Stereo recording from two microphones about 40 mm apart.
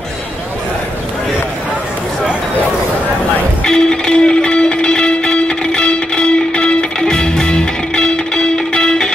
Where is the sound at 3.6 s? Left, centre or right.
Left.